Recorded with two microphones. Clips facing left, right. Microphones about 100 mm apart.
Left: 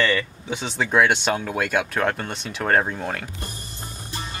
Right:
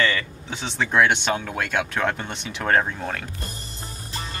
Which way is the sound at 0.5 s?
10° left (ahead or behind).